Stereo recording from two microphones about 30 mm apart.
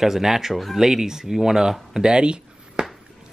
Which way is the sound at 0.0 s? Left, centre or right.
Centre.